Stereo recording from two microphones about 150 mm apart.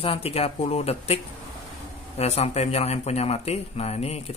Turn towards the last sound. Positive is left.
turn(degrees=45)  # may be behind; listen again after turning